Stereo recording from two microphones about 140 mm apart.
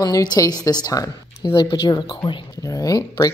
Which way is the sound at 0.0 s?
30° left (ahead or behind).